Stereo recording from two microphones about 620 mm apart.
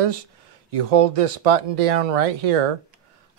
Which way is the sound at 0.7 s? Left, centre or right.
Right.